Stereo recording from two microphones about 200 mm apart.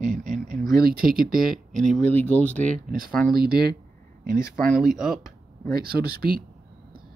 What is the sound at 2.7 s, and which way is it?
Speech, 45° right (ahead or behind).